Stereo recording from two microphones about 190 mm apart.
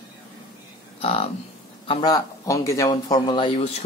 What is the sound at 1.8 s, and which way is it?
A man's voice, 20° left (ahead or behind).